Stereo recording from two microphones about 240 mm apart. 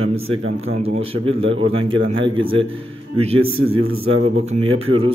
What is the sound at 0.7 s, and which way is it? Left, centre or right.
Speech, right.